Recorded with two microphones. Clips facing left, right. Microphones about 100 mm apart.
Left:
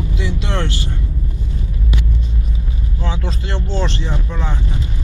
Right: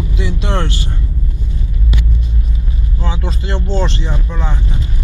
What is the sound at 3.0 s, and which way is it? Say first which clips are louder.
Speech: right 2 dB; 15° right (ahead or behind).